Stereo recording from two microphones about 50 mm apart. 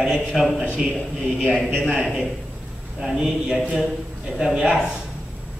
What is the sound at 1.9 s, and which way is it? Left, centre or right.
A man's voice, centre.